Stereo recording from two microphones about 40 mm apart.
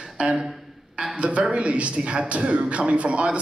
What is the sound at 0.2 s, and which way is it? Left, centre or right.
A man's voice, right.